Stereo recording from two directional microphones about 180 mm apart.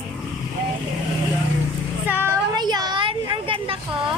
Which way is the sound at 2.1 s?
10° right (ahead or behind).